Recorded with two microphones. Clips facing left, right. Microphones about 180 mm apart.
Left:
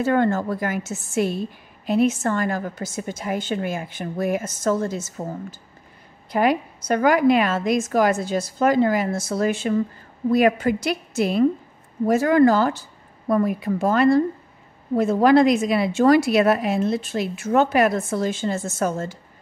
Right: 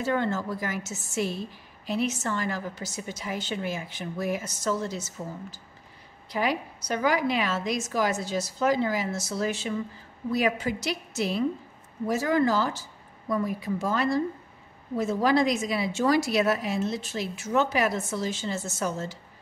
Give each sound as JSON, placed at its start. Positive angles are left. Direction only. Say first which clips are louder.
{"t": 0.0, "sound": "a woman's voice", "louder": "left 7 dB", "side_deg": 55}